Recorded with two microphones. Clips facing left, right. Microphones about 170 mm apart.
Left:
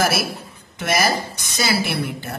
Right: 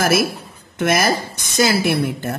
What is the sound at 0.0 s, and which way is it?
A woman's voice, 55° right (ahead or behind).